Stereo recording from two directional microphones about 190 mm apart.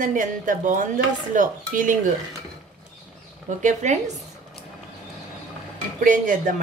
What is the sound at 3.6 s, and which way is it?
Speech, 40° right (ahead or behind).